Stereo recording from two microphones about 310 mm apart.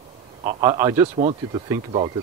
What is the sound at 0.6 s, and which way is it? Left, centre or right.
Speech, centre.